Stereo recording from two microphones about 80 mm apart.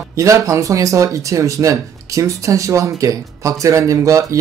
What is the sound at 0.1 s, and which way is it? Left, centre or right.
Speech, right.